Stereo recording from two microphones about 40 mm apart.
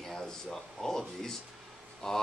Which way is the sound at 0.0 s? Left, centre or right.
Centre.